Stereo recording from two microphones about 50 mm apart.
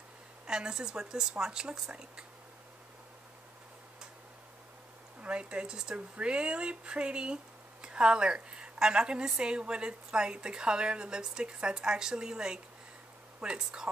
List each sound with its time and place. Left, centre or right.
0.5 s a woman's voice: centre
5.2 s a woman's voice: right